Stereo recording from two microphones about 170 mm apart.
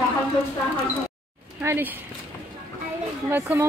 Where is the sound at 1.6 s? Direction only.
15° right (ahead or behind).